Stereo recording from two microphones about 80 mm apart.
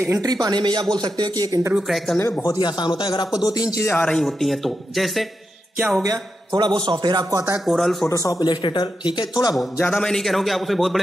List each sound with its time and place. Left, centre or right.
0.0 s speech: right
0.3 s a man's voice: right
1.8 s a man's voice: centre
2.2 s speech: left
2.6 s speech: left
3.3 s speech: left
3.9 s speech: centre
4.4 s a man's voice: centre
6.0 s a man's voice: right
7.6 s a man's voice: centre
8.1 s speech: left
8.5 s speech: left
9.8 s a man's voice: centre